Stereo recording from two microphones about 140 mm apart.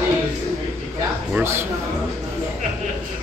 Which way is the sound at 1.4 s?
20° right (ahead or behind).